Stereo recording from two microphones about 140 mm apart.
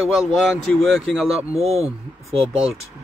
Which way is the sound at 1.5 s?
45° right (ahead or behind).